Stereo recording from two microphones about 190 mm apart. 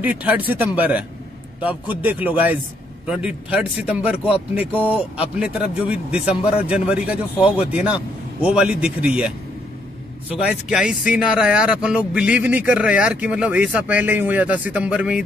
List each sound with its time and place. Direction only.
0.0 s a man's voice: 10° right (ahead or behind)
10.3 s a man's voice: 5° right (ahead or behind)